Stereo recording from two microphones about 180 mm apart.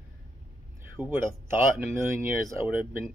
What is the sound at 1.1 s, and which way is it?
Speech, 15° right (ahead or behind).